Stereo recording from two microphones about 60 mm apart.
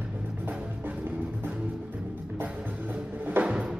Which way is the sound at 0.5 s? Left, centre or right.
Right.